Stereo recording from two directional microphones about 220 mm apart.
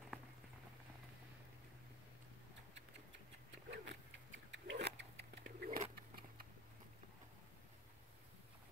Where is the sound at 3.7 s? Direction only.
55° right (ahead or behind).